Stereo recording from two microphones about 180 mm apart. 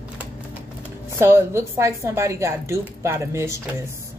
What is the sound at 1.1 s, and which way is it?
A woman's voice, 15° right (ahead or behind).